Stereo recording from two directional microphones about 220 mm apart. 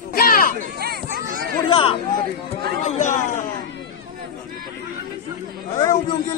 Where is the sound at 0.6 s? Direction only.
45° right (ahead or behind).